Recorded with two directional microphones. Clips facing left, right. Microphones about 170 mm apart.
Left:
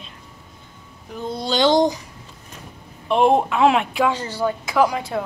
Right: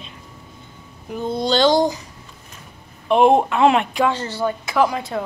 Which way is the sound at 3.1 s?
Centre (ahead or behind).